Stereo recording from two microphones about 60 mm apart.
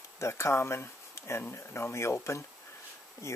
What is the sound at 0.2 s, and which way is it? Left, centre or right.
Speech, left.